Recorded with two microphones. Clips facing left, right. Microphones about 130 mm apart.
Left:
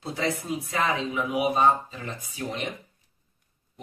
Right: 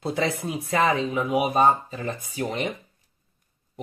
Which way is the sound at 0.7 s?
55° right (ahead or behind).